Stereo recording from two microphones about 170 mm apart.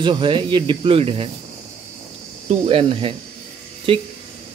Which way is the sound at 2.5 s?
35° right (ahead or behind).